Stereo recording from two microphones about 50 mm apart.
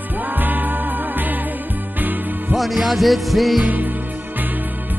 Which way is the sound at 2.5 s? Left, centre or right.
Centre.